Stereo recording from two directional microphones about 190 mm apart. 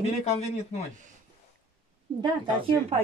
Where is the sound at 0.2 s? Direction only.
35° left (ahead or behind).